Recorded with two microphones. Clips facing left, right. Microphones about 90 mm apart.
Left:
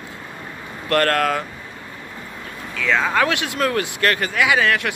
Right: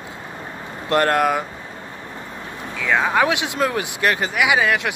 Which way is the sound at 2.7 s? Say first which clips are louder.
Right 1 dB; 15° right (ahead or behind).